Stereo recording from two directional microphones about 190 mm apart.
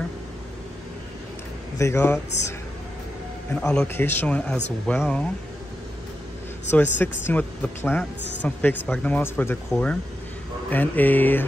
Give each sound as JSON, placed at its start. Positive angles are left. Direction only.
{"t": 1.8, "sound": "a man's voice", "side_deg": 15}
{"t": 3.5, "sound": "a man's voice", "side_deg": 5}
{"t": 6.7, "sound": "a man's voice", "side_deg": 10}